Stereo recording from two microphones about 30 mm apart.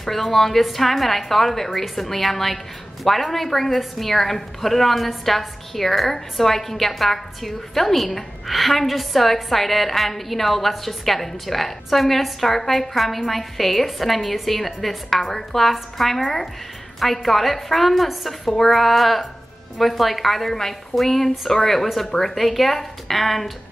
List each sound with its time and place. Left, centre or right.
0.0 s a woman's voice: centre